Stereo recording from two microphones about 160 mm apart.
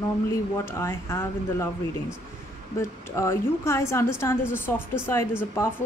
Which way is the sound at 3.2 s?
15° left (ahead or behind).